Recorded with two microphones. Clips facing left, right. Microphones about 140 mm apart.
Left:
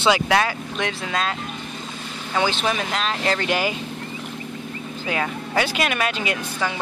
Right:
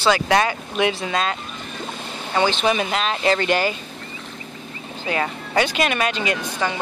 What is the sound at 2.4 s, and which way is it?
Speech, centre (ahead or behind).